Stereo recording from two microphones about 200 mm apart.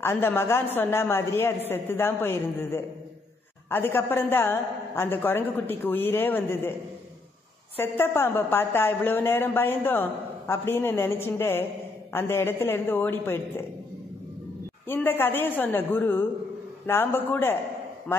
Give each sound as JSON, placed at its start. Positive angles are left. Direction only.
{"t": 0.0, "sound": "a woman's voice", "side_deg": 10}
{"t": 7.7, "sound": "a woman's voice", "side_deg": 10}
{"t": 14.9, "sound": "a woman's voice", "side_deg": 10}